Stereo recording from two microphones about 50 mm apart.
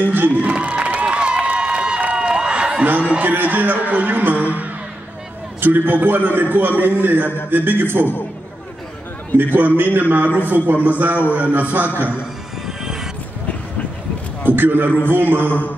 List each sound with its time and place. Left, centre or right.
0.0 s a sound: right
0.5 s a sound: right
2.8 s a man's voice: right
9.4 s a man's voice: right
12.6 s music: centre
14.5 s a man's voice: right